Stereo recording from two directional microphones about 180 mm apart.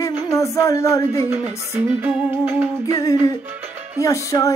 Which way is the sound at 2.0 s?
10° right (ahead or behind).